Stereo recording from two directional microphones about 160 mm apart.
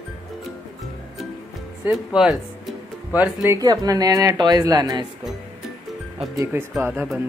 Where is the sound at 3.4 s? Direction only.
20° right (ahead or behind).